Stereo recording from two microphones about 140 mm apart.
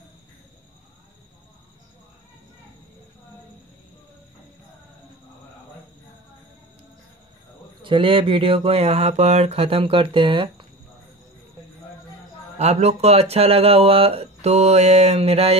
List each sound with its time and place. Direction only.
7.8 s speech: 35° right (ahead or behind)
12.5 s speech: 50° right (ahead or behind)